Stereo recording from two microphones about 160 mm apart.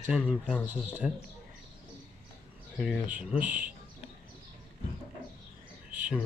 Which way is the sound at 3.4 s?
55° right (ahead or behind).